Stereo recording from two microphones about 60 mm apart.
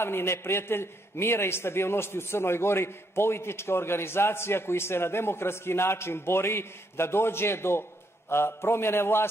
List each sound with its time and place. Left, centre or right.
0.0 s a man's voice: left